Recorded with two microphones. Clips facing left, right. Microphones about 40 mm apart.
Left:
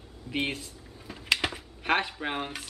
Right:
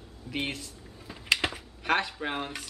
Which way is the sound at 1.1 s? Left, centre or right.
Centre.